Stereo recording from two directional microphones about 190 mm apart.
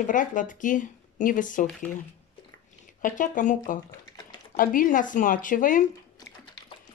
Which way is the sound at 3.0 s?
45° left (ahead or behind).